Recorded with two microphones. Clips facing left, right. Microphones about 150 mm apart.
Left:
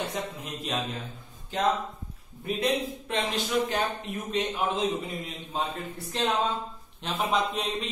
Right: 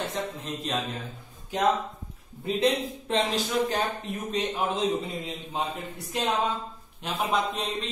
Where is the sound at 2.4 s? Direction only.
30° right (ahead or behind).